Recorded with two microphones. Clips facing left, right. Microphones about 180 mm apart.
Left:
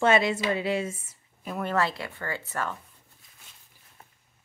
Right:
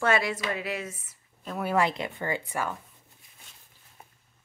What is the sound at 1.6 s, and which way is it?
A woman's voice, 10° right (ahead or behind).